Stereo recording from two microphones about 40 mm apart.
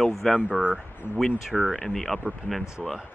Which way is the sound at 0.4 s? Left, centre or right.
Right.